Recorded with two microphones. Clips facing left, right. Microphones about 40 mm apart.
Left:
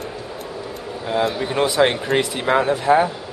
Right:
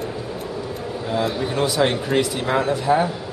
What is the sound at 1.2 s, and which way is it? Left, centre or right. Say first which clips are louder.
Speech: left 2 dB; centre.